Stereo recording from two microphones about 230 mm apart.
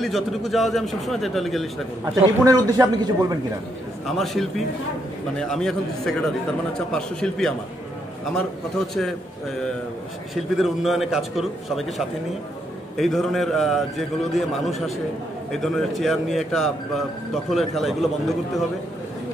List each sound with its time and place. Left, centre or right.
0.0 s speech: centre
2.4 s a man's voice: centre
4.2 s speech: centre
10.3 s speech: centre